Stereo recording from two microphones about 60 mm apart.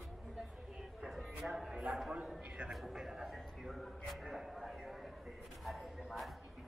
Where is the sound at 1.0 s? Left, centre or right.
Centre.